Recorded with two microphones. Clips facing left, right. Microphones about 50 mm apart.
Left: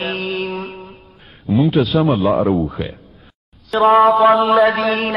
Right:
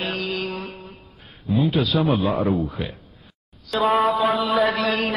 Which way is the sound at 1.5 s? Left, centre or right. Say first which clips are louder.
Left 6 dB; centre.